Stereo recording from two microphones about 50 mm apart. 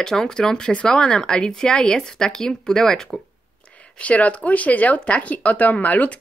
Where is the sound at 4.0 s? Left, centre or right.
Left.